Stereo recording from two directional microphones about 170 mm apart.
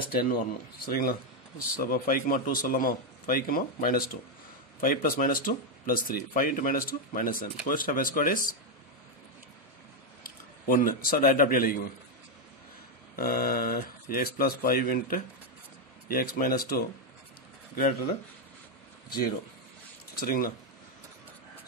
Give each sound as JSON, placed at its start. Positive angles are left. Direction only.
{"t": 0.1, "sound": "speech", "side_deg": 60}
{"t": 10.2, "sound": "a man's voice", "side_deg": 55}
{"t": 13.1, "sound": "speech", "side_deg": 60}
{"t": 19.0, "sound": "speech", "side_deg": 65}